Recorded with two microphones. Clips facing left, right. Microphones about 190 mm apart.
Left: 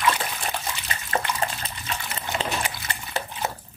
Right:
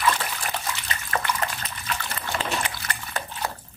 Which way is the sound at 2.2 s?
25° left (ahead or behind).